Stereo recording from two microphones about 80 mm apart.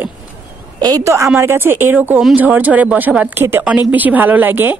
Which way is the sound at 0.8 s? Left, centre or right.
Right.